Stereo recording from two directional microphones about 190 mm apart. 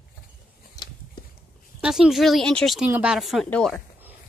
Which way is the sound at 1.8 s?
5° right (ahead or behind).